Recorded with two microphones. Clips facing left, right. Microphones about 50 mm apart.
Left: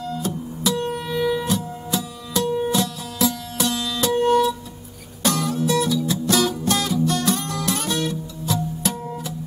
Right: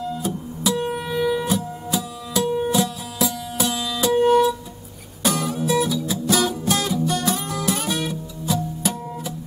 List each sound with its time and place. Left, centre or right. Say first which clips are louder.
0.0 s music: even; centre